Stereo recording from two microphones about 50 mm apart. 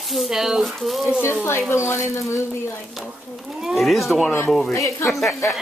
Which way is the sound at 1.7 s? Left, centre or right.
Left.